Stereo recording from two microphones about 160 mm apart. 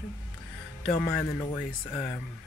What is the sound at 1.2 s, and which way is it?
Speech, 25° left (ahead or behind).